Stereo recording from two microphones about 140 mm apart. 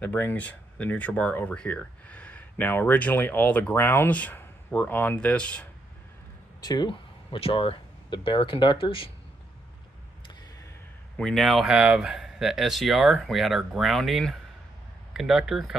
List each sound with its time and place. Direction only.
0.0 s speech: 15° left (ahead or behind)
6.6 s speech: 30° left (ahead or behind)
11.1 s speech: 5° left (ahead or behind)